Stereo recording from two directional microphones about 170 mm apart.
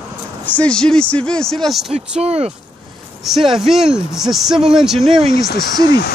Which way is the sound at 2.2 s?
35° right (ahead or behind).